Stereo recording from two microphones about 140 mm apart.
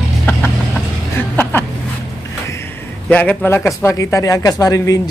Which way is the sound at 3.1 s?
10° left (ahead or behind).